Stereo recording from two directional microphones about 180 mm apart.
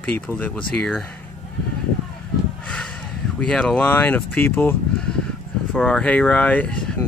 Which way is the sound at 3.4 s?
5° left (ahead or behind).